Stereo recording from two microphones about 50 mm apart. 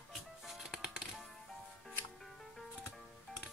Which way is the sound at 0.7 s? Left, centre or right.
Centre.